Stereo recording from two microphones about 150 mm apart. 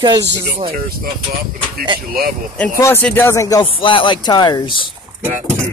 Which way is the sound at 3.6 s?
35° left (ahead or behind).